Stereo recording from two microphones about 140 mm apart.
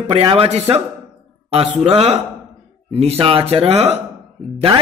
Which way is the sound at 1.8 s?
45° right (ahead or behind).